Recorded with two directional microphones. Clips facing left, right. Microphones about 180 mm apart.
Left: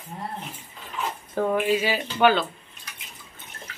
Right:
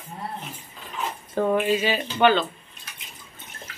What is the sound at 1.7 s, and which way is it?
Speech, 10° left (ahead or behind).